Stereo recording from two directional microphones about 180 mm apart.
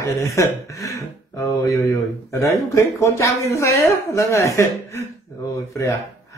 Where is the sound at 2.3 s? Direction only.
15° left (ahead or behind).